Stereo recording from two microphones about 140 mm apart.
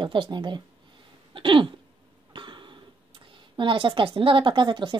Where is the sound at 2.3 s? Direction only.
35° right (ahead or behind).